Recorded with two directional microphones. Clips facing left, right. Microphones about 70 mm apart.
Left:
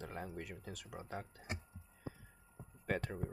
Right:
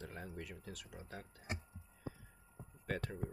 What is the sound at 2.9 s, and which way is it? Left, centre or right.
Speech, left.